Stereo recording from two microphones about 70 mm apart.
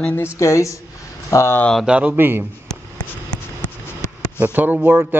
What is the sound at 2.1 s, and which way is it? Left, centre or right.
Speech, right.